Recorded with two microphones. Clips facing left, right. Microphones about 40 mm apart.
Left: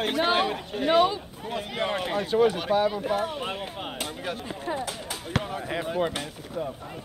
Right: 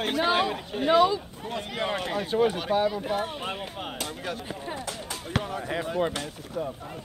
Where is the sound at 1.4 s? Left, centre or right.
Centre.